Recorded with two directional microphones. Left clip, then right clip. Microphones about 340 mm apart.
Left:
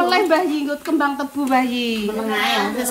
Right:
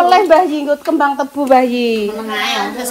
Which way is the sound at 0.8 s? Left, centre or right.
Right.